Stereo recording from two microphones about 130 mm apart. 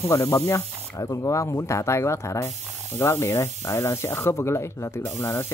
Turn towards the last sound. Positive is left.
turn(degrees=25)  # may be behind; listen again after turning